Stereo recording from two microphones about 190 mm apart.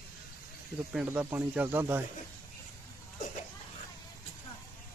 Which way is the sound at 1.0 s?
10° right (ahead or behind).